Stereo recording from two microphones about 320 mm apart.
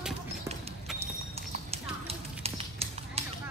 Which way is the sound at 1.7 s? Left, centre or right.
Centre.